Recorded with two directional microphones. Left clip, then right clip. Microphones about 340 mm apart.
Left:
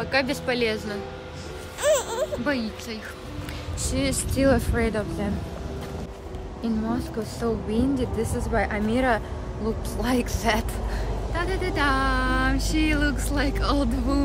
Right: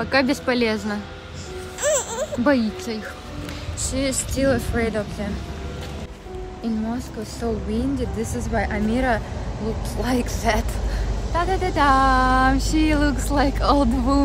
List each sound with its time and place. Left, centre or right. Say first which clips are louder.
0.0 s speech: right 4 dB; centre
1.8 s music: even; centre
2.4 s speech: right 7 dB; centre
3.9 s speech: right 2 dB; centre
6.6 s speech: even; centre
11.3 s speech: right 6 dB; centre